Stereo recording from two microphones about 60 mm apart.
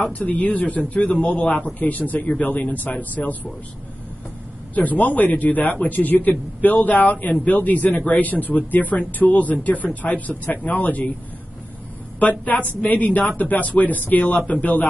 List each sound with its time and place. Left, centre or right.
0.1 s a man's voice: left
4.7 s a man's voice: left
12.2 s a man's voice: left